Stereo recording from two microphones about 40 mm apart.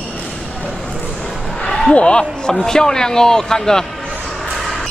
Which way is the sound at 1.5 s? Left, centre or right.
Centre.